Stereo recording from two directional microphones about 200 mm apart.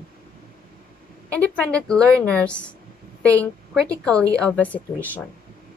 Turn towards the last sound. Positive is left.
turn(degrees=10)  # may be behind; listen again after turning